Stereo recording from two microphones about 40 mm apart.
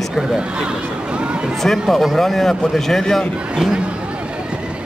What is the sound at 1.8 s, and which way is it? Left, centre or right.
A man's voice, centre.